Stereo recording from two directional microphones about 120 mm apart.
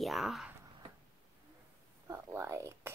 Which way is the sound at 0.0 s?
Centre (ahead or behind).